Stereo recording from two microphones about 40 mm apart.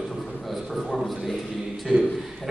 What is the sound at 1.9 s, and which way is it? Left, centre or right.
Speech, right.